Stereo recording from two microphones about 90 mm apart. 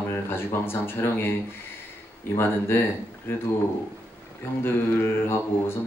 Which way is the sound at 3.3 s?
25° left (ahead or behind).